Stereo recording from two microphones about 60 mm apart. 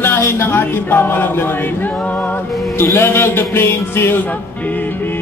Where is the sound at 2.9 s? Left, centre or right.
Left.